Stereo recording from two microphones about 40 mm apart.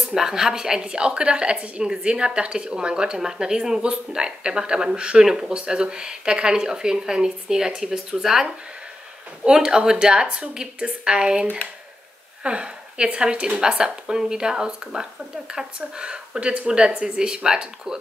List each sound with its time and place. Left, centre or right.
0.0 s a woman's voice: centre; by 5.2 s right
5.2 s a woman's voice: centre
8.2 s a woman's voice: centre
12.4 s a woman's voice: right